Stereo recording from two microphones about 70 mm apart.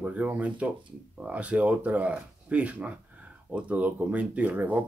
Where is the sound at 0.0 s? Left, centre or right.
Right.